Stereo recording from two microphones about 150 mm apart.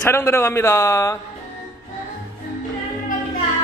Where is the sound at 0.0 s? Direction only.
15° left (ahead or behind).